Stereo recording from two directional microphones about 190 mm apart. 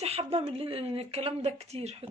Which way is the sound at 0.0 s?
30° right (ahead or behind).